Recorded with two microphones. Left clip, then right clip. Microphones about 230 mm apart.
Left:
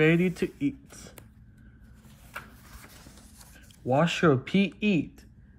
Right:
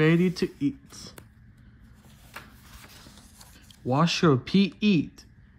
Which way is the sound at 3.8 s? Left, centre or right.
Centre.